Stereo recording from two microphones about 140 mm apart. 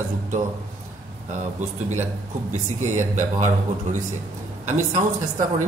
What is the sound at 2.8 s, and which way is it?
Speech, 60° right (ahead or behind).